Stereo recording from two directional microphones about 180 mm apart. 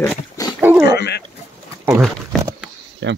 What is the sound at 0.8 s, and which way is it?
Dog, 65° left (ahead or behind).